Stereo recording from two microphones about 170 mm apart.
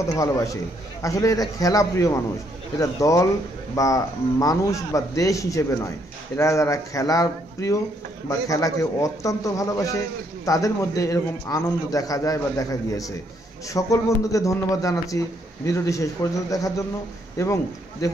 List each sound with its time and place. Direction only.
0.0 s a man's voice: 20° left (ahead or behind)